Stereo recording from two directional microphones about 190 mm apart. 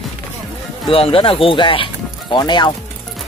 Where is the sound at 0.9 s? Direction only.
30° left (ahead or behind).